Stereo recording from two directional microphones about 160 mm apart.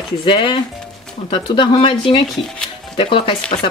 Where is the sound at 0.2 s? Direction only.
30° left (ahead or behind).